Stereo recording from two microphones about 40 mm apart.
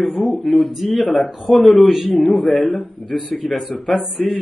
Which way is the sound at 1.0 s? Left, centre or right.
Left.